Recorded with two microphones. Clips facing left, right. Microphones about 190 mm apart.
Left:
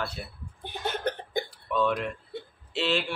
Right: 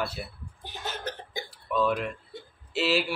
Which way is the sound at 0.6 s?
55° left (ahead or behind).